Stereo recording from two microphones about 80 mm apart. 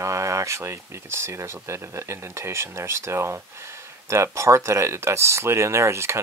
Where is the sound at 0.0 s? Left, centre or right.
Right.